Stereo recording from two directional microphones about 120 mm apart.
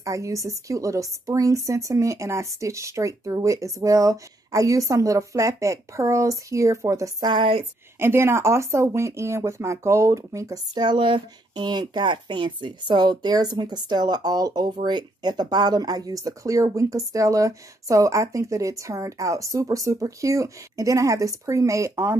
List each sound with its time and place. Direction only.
0.0 s speech: 25° right (ahead or behind); by 7.6 s 45° right (ahead or behind)
8.0 s speech: 20° right (ahead or behind)